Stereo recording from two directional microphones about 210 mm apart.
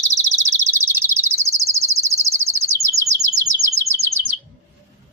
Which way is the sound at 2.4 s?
15° right (ahead or behind).